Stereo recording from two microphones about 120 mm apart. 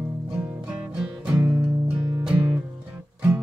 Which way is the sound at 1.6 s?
25° right (ahead or behind).